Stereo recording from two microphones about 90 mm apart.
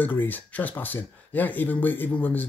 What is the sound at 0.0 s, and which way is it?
Speech, 20° left (ahead or behind).